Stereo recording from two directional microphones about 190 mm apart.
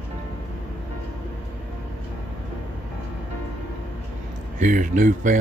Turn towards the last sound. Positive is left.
turn(degrees=-45)  # may be behind; listen again after turning